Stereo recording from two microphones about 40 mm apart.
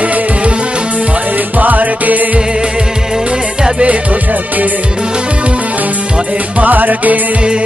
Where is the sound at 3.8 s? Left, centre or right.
Right.